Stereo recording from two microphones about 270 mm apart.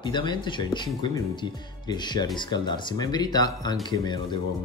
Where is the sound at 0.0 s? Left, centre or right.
Centre.